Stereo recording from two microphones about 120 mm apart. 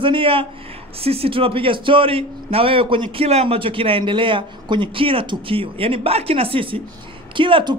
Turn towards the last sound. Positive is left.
turn(degrees=-40)  # may be behind; listen again after turning